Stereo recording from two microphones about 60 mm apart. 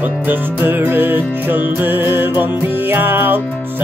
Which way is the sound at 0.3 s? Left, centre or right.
Right.